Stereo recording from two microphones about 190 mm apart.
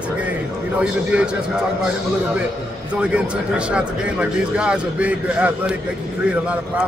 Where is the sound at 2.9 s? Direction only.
5° right (ahead or behind).